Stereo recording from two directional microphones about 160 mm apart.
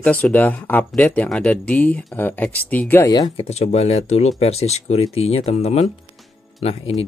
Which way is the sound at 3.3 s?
40° left (ahead or behind).